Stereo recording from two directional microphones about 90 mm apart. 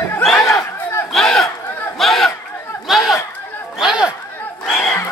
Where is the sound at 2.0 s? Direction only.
Centre (ahead or behind).